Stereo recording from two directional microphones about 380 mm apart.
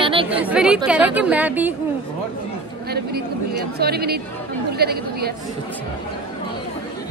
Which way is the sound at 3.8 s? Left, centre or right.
Right.